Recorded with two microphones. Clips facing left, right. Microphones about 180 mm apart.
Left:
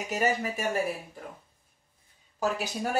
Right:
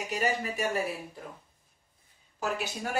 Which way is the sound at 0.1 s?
45° left (ahead or behind).